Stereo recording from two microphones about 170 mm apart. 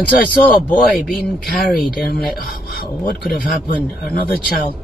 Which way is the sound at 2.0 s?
60° left (ahead or behind).